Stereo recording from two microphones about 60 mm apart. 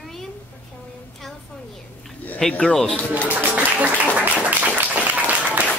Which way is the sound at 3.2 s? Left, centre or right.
Right.